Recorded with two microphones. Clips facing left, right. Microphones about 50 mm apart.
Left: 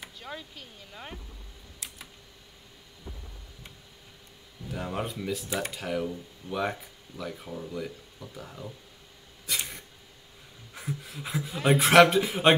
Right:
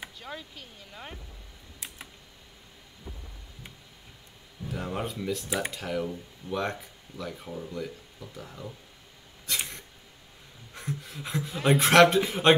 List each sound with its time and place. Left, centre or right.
0.2 s speech: centre
3.1 s thunder: right
4.6 s speech: centre
9.5 s a sound: centre
10.7 s speech: centre